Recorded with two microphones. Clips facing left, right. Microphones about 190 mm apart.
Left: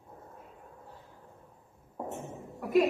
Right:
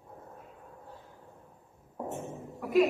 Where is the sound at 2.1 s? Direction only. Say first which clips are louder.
Right 2 dB; centre (ahead or behind).